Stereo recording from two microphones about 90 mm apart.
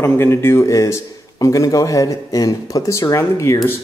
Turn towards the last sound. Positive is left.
turn(degrees=35)  # may be behind; listen again after turning